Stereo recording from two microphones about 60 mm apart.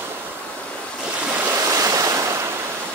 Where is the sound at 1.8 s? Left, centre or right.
Right.